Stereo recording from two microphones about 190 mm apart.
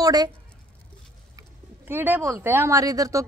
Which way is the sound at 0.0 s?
20° right (ahead or behind).